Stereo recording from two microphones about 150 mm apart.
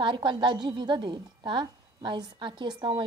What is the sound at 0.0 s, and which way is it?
Speech, 30° right (ahead or behind).